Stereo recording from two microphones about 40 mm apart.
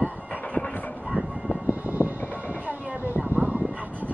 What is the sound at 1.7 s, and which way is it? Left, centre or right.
Vehicle, right.